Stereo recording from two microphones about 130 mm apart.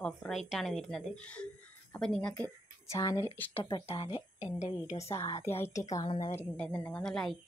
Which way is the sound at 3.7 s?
40° left (ahead or behind).